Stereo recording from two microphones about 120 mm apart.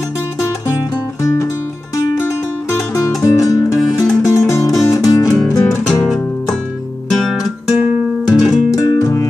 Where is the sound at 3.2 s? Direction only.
30° left (ahead or behind).